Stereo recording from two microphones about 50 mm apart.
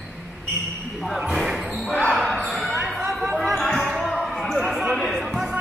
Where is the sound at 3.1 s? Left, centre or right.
Centre.